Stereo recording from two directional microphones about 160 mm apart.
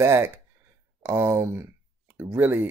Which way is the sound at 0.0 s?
15° right (ahead or behind).